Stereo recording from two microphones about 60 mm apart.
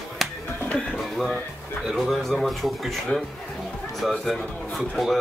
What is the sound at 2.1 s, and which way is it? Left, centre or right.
Speech, centre.